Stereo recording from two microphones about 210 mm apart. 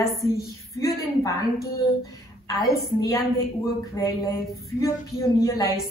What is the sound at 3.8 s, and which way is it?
A woman's voice, 20° left (ahead or behind).